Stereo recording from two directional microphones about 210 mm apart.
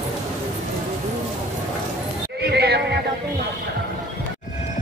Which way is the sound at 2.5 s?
50° right (ahead or behind).